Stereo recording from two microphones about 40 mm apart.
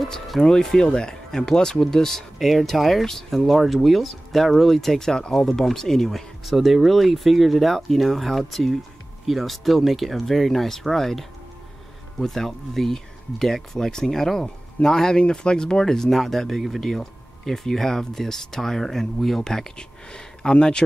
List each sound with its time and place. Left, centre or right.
0.5 s speech: centre
6.4 s speech: centre
16.9 s speech: centre